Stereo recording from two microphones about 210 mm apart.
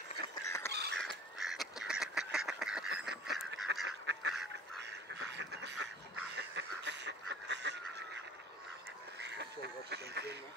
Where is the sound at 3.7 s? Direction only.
55° right (ahead or behind).